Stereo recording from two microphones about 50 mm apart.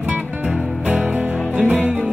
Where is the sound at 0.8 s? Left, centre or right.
Centre.